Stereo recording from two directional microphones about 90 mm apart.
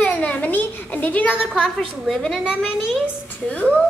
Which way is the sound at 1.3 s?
5° right (ahead or behind).